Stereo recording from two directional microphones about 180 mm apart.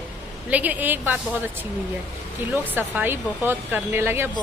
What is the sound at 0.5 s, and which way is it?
Speech, 10° right (ahead or behind).